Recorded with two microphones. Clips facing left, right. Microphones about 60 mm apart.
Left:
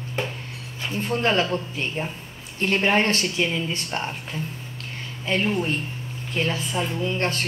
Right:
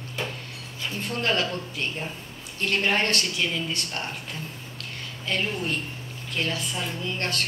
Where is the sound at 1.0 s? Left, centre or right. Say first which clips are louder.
Left 4 dB; left.